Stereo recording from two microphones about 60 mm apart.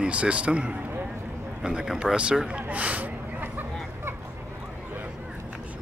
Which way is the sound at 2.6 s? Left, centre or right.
Right.